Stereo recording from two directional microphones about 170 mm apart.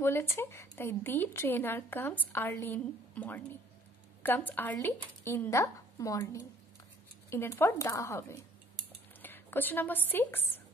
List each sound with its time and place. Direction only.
0.0 s a woman's voice: 15° left (ahead or behind)